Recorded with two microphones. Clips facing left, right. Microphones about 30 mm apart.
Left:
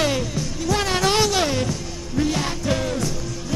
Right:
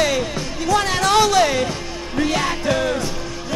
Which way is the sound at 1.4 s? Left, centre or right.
Right.